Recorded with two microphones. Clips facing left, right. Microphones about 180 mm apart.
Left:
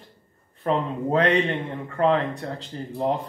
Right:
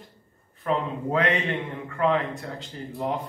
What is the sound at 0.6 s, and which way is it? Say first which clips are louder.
Speech: left 2 dB; 35° left (ahead or behind).